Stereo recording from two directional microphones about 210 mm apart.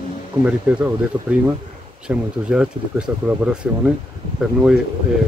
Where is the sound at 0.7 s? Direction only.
5° right (ahead or behind).